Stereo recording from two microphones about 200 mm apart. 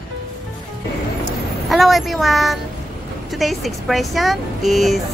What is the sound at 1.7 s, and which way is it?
Speech, centre (ahead or behind).